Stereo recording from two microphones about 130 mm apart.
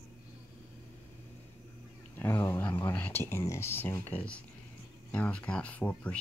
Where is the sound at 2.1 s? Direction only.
15° left (ahead or behind).